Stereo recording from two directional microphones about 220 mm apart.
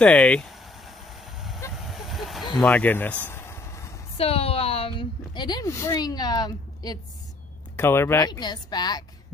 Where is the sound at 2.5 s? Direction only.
5° left (ahead or behind).